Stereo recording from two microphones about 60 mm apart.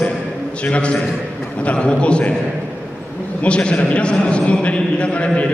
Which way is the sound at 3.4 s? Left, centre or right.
Centre.